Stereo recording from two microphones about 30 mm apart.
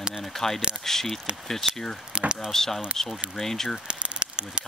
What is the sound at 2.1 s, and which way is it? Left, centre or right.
Speech, right.